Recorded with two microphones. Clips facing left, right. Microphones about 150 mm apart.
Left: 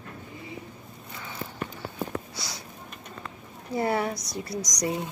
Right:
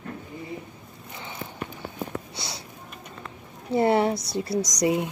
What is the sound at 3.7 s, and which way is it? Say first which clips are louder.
Speech: right 6 dB; 25° right (ahead or behind).